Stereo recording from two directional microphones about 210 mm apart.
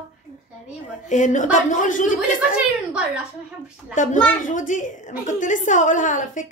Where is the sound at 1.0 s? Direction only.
35° left (ahead or behind).